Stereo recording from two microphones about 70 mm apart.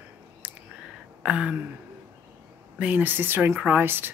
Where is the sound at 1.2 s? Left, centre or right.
Centre.